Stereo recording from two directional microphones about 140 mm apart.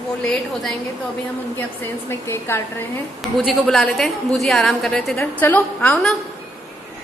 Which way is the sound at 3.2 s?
Centre (ahead or behind).